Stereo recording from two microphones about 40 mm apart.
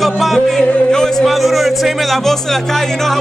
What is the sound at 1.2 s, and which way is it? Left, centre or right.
Speech, centre.